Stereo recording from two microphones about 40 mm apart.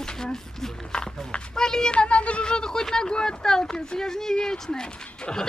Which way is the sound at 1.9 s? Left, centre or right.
Left.